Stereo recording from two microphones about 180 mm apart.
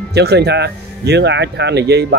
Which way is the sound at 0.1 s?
65° right (ahead or behind).